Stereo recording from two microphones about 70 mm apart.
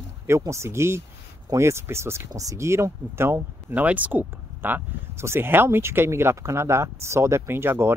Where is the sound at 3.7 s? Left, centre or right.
Right.